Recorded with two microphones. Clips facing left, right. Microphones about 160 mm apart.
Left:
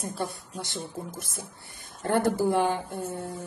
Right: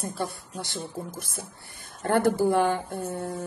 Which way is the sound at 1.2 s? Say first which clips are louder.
Right 1 dB; 20° left (ahead or behind).